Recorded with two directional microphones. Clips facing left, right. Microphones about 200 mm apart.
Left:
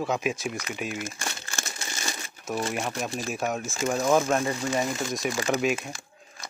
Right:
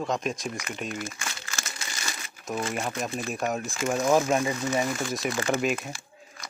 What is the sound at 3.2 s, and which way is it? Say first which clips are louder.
Speech: even; centre (ahead or behind).